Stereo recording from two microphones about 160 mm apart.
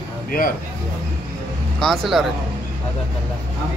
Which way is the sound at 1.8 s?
Centre (ahead or behind).